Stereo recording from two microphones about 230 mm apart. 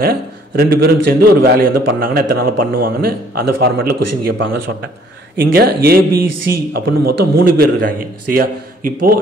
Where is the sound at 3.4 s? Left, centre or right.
Right.